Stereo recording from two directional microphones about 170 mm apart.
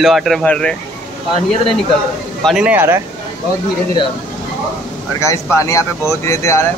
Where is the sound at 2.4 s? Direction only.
5° right (ahead or behind).